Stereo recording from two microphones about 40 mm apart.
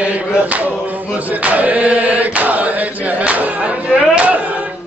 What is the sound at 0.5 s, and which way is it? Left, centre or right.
Chant, right.